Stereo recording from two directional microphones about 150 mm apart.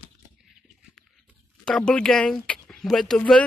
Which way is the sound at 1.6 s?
5° left (ahead or behind).